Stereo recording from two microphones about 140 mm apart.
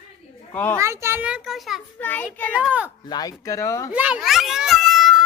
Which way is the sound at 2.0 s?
15° left (ahead or behind).